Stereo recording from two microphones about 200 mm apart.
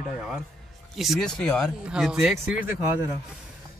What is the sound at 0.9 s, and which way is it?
Speech, centre (ahead or behind).